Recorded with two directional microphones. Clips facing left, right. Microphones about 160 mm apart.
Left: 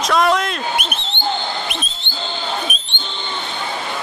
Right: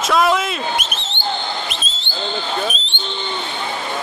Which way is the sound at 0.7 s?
60° left (ahead or behind).